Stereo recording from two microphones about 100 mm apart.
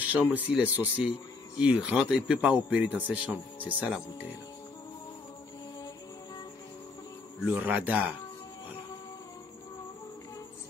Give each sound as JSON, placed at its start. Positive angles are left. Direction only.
{"t": 0.0, "sound": "speech", "side_deg": -15}
{"t": 7.4, "sound": "speech", "side_deg": -15}